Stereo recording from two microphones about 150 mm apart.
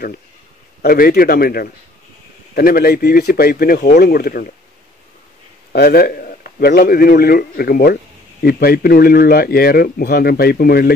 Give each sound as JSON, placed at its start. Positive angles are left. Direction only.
{"t": 0.8, "sound": "speech", "side_deg": 75}
{"t": 5.7, "sound": "a man's voice", "side_deg": 90}